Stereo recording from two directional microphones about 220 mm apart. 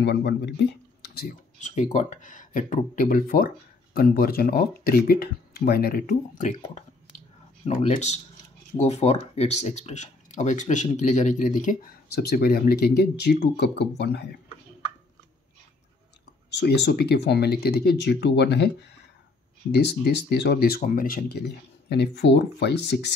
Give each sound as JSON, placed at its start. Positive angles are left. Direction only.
{"t": 0.0, "sound": "speech", "side_deg": 50}
{"t": 1.6, "sound": "speech", "side_deg": 30}
{"t": 16.5, "sound": "speech", "side_deg": 50}